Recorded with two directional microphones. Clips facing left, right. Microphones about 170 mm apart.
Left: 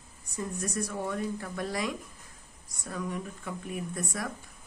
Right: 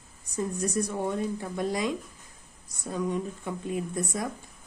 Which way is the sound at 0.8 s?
20° right (ahead or behind).